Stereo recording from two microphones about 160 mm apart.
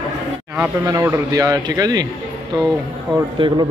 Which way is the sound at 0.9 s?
20° right (ahead or behind).